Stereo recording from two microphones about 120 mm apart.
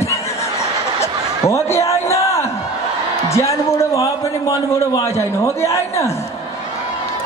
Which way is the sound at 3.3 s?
25° left (ahead or behind).